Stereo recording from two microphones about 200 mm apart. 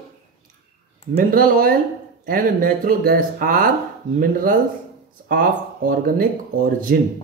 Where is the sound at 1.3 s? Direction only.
45° right (ahead or behind).